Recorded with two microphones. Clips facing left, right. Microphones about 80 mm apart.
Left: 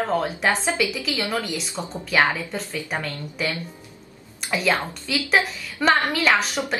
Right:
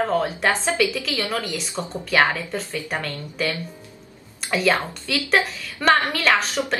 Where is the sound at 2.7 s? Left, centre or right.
Centre.